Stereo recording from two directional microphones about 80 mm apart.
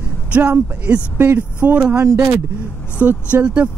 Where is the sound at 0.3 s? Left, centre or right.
Centre.